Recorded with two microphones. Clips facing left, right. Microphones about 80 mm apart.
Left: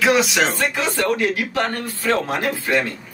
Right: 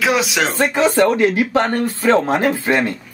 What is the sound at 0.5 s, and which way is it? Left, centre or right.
Speech, right.